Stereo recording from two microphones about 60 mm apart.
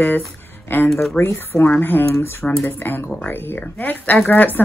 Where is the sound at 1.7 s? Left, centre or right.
Left.